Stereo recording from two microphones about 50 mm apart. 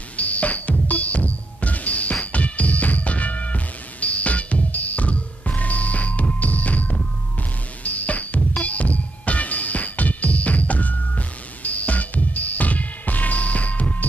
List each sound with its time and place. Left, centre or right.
0.1 s music: left